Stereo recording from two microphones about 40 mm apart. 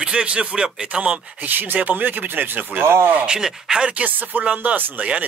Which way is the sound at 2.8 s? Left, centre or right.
Right.